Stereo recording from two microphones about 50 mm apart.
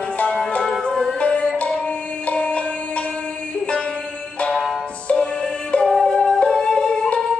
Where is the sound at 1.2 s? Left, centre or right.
Left.